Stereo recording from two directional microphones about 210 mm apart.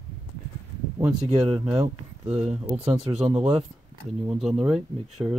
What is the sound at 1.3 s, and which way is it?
Speech, 20° right (ahead or behind).